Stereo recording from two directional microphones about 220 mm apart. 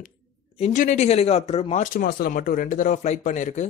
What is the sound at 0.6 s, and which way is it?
Speech, 35° left (ahead or behind).